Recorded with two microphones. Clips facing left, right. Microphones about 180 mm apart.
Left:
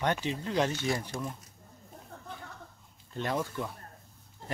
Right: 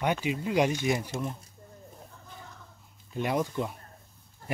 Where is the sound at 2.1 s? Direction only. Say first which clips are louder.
Left 4 dB; 60° left (ahead or behind).